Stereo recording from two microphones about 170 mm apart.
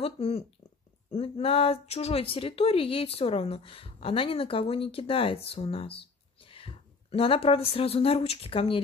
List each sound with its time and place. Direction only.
0.0 s speech: 35° left (ahead or behind)